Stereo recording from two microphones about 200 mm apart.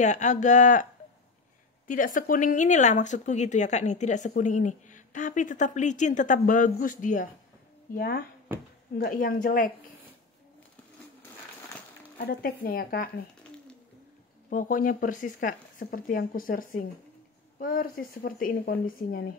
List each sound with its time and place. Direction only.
0.0 s speech: 35° left (ahead or behind)
1.9 s speech: 40° left (ahead or behind)
8.5 s speech: 10° right (ahead or behind)
8.9 s speech: 45° left (ahead or behind)
12.2 s speech: 50° left (ahead or behind)
14.5 s speech: 45° left (ahead or behind)